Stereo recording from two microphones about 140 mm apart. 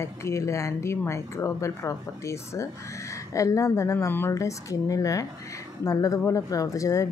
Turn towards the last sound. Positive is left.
turn(degrees=25)  # may be behind; listen again after turning